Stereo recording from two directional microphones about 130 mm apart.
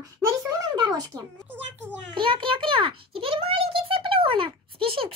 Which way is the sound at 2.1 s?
40° right (ahead or behind).